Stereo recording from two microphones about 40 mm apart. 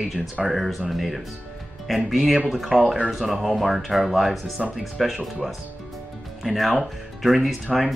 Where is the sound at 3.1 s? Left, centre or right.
Centre.